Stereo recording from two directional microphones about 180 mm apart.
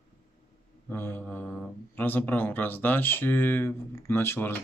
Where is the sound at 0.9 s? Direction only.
10° left (ahead or behind).